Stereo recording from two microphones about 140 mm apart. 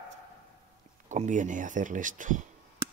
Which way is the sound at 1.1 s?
60° right (ahead or behind).